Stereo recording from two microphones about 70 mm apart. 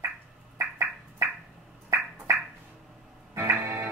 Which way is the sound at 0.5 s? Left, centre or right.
Right.